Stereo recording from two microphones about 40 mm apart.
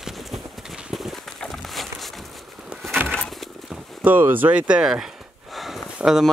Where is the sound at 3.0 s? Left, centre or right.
Left.